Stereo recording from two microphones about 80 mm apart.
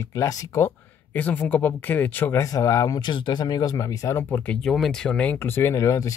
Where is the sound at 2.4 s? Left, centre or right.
Left.